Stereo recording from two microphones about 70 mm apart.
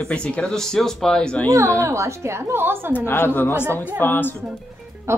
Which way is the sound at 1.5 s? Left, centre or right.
Right.